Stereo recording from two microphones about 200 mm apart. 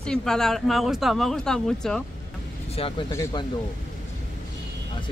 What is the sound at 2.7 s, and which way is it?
Speech, 30° left (ahead or behind).